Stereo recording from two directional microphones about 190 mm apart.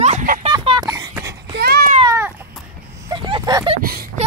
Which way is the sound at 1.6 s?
55° right (ahead or behind).